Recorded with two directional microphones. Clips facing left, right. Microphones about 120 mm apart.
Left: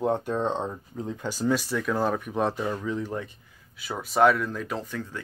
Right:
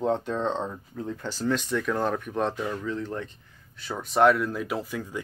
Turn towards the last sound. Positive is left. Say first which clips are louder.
# right 1 dB
turn(degrees=-10)  # may be behind; listen again after turning